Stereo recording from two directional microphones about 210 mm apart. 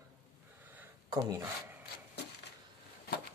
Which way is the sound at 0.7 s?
15° right (ahead or behind).